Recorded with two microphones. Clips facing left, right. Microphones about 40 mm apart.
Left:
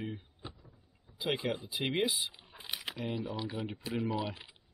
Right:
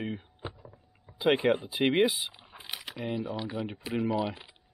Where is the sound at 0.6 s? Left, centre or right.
Right.